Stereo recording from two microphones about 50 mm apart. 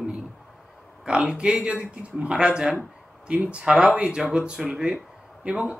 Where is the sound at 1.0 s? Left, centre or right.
Centre.